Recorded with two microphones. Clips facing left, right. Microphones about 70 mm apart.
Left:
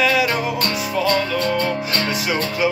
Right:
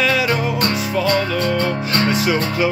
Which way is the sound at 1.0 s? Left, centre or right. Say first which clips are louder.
Even; right.